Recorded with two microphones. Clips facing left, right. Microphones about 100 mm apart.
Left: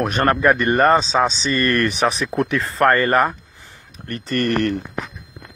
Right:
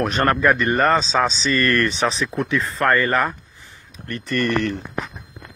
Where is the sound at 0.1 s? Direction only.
35° left (ahead or behind).